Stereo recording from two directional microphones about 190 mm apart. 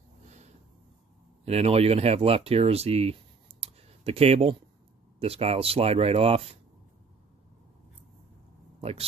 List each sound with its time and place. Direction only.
1.4 s speech: 35° right (ahead or behind)